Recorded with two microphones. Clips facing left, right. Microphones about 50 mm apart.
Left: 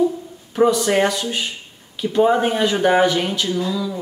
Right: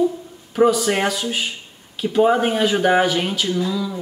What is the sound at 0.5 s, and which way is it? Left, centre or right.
Speech, centre.